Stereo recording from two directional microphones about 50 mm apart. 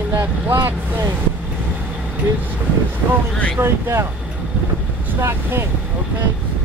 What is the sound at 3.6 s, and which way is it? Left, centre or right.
Speech, right.